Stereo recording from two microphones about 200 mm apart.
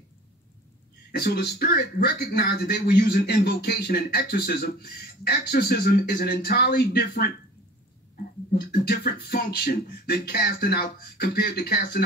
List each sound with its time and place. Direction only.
1.1 s a man's voice: 55° left (ahead or behind)
8.5 s a man's voice: 50° left (ahead or behind)